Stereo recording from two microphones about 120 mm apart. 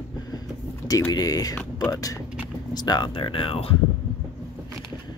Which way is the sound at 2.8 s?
35° left (ahead or behind).